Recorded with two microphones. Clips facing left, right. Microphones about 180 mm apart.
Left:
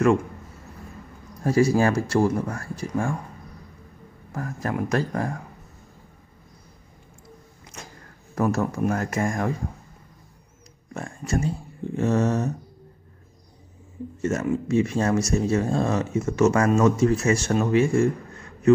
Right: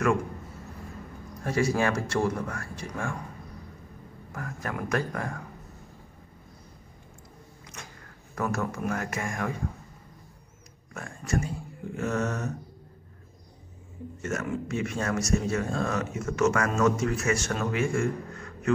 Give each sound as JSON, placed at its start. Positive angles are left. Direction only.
{"t": 1.4, "sound": "speech", "side_deg": 35}
{"t": 4.3, "sound": "speech", "side_deg": 30}
{"t": 8.4, "sound": "speech", "side_deg": 30}
{"t": 10.9, "sound": "speech", "side_deg": 30}
{"t": 14.2, "sound": "speech", "side_deg": 25}